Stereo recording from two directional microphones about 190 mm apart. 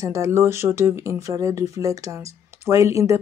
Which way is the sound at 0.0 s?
15° right (ahead or behind).